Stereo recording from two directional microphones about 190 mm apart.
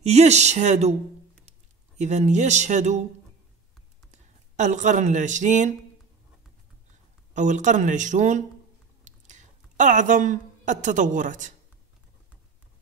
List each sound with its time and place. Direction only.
0.0 s speech: 35° right (ahead or behind)
2.0 s speech: 35° right (ahead or behind)
4.1 s speech: 40° right (ahead or behind)
7.3 s a woman's voice: 40° right (ahead or behind)